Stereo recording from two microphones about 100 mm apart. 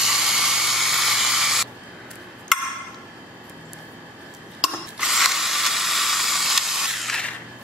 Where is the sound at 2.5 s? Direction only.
5° left (ahead or behind).